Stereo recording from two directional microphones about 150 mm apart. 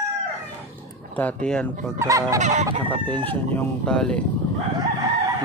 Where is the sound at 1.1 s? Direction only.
10° left (ahead or behind).